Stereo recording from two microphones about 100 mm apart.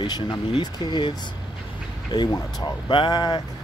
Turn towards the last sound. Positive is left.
turn(degrees=50)  # may be behind; listen again after turning